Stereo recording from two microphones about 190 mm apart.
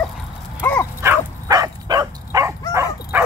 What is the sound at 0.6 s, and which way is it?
Dog, 10° left (ahead or behind).